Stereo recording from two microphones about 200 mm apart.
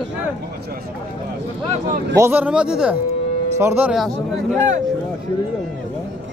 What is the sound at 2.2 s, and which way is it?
Speech, 10° right (ahead or behind).